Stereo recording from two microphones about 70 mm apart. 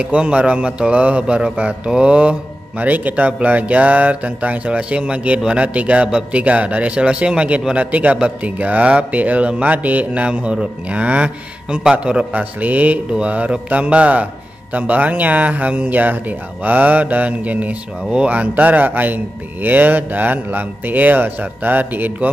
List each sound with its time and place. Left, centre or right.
0.0 s a man's voice: centre